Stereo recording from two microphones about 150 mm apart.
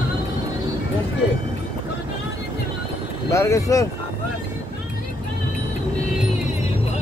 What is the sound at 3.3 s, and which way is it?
Speech, 20° left (ahead or behind).